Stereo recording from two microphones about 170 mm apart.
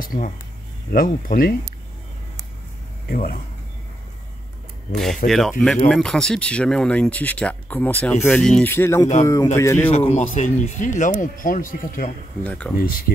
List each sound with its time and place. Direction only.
0.0 s speech: 55° left (ahead or behind)
3.1 s speech: 55° left (ahead or behind)
4.9 s speech: centre (ahead or behind)
9.8 s speech: 35° left (ahead or behind); by 12.1 s 55° left (ahead or behind)
12.4 s speech: 10° left (ahead or behind)
12.7 s speech: 60° left (ahead or behind)